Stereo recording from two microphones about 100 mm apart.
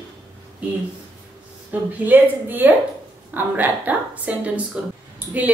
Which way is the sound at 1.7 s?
20° right (ahead or behind).